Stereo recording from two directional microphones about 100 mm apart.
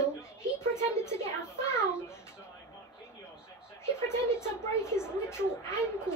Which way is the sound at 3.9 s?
25° left (ahead or behind).